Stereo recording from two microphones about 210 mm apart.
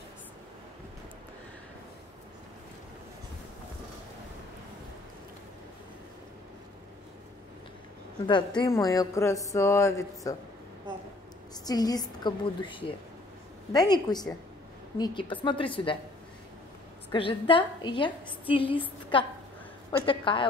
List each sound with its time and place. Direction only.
8.3 s a woman's voice: 20° left (ahead or behind)
11.6 s a woman's voice: 20° left (ahead or behind)
17.1 s a woman's voice: 25° left (ahead or behind)